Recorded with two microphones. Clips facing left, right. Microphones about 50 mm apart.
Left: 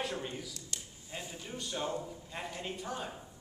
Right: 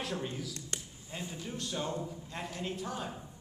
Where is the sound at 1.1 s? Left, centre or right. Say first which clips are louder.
Right 2 dB; centre.